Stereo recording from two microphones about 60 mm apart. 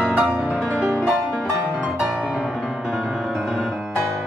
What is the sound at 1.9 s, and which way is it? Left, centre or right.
Music, centre.